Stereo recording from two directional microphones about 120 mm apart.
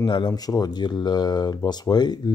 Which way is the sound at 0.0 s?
35° left (ahead or behind).